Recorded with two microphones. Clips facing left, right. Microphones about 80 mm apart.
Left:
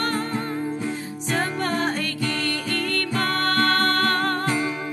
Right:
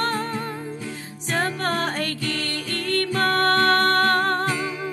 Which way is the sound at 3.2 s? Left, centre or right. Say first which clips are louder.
Right 3 dB; right.